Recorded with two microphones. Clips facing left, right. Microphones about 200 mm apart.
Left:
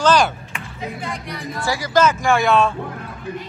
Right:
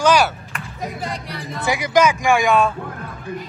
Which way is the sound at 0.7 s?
35° right (ahead or behind).